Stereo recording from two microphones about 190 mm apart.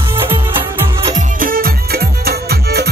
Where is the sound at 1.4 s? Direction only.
50° right (ahead or behind).